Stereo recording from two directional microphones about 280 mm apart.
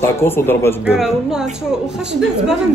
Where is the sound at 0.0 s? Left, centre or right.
Centre.